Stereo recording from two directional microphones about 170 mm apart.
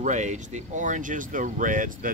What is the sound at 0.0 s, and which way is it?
Speech, 45° right (ahead or behind).